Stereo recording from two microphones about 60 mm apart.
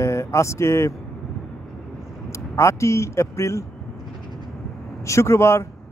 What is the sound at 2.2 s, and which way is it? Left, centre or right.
Speech, left.